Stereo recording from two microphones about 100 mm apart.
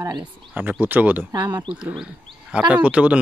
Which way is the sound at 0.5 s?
15° right (ahead or behind).